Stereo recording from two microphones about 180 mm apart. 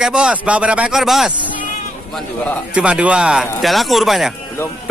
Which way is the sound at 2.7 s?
5° right (ahead or behind).